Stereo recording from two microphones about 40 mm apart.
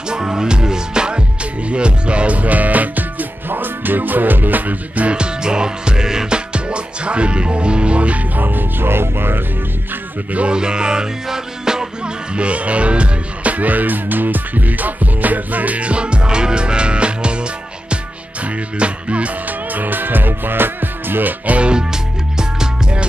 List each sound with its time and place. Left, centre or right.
0.1 s music: centre; by 5.1 s right
5.1 s music: right
8.4 s music: right
10.5 s music: right
12.4 s music: right
19.7 s music: right
21.5 s music: right